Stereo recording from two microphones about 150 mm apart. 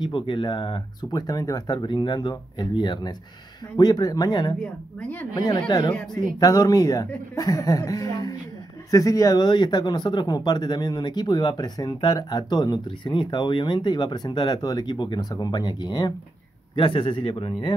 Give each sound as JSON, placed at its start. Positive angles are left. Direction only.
{"t": 0.0, "sound": "speech", "side_deg": 30}
{"t": 5.0, "sound": "speech", "side_deg": 10}
{"t": 5.3, "sound": "a man's voice", "side_deg": 25}